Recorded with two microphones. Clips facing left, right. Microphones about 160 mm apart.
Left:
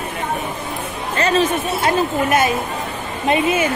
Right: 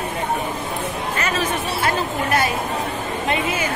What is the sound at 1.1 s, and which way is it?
Speech, 30° left (ahead or behind).